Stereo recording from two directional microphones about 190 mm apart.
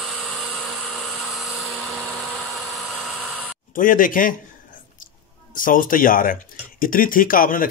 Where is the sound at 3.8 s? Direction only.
45° left (ahead or behind).